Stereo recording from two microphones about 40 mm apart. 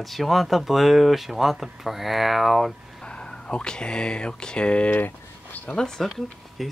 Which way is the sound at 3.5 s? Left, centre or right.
Left.